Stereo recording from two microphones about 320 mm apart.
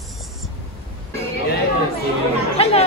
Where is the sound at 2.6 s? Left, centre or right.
Centre.